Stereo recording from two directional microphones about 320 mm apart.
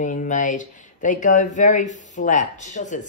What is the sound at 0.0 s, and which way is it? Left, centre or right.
Speech, left.